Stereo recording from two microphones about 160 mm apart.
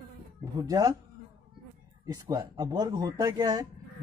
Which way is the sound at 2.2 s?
20° right (ahead or behind).